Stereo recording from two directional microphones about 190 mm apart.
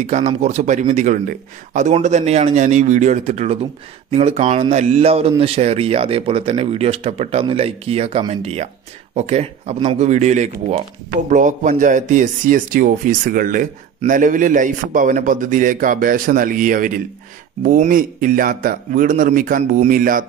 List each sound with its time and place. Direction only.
0.0 s speech: 40° right (ahead or behind)